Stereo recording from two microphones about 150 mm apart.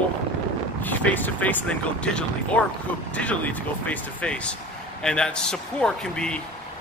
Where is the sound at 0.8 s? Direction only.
10° left (ahead or behind).